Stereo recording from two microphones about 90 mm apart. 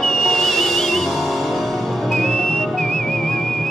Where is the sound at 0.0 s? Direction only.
5° left (ahead or behind).